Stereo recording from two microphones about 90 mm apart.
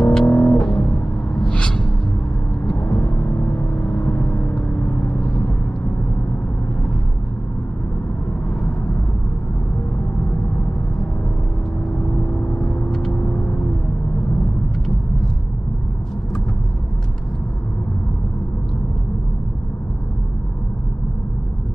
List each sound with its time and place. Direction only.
0.0 s music: 10° left (ahead or behind)
0.3 s music: 20° left (ahead or behind)
2.6 s vehicle: 10° left (ahead or behind)
12.4 s vehicle: 20° left (ahead or behind)
12.9 s vehicle: 5° left (ahead or behind)